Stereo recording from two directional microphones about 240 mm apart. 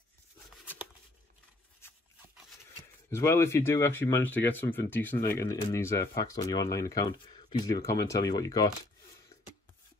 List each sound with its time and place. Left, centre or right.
3.1 s speech: centre